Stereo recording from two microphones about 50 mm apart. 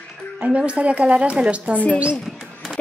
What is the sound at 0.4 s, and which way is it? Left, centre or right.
A woman's voice, right.